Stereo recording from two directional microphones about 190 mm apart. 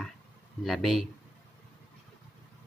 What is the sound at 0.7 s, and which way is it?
Speech, centre (ahead or behind).